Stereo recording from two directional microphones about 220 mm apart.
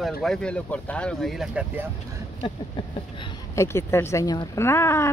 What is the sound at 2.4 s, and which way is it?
Speech, 20° left (ahead or behind).